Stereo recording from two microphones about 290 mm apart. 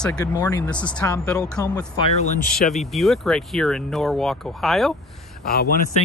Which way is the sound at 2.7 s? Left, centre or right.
Centre.